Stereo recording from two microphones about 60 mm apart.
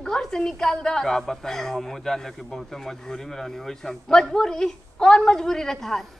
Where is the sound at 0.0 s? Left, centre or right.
Centre.